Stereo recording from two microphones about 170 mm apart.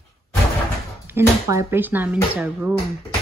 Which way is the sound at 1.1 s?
15° right (ahead or behind).